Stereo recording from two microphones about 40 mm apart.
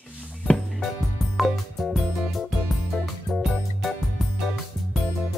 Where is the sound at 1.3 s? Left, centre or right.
Centre.